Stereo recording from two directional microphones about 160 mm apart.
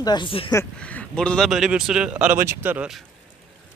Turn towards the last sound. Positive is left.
turn(degrees=-5)  # may be behind; listen again after turning